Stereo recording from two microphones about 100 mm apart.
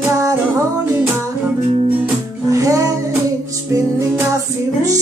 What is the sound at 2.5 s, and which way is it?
Music, 35° right (ahead or behind).